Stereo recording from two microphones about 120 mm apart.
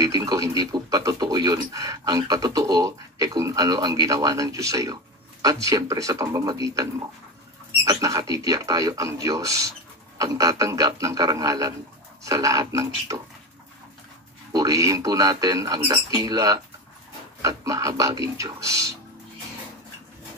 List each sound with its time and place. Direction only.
0.0 s speech: 30° right (ahead or behind)
14.5 s speech: 30° right (ahead or behind)